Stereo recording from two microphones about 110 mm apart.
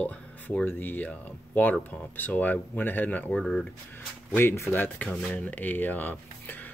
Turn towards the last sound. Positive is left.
turn(degrees=15)  # may be behind; listen again after turning